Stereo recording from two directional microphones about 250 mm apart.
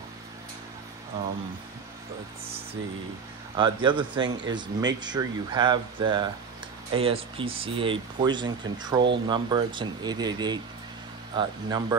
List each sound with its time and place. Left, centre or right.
3.5 s speech: centre